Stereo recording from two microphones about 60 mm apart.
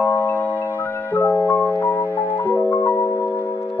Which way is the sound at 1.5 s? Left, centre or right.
Left.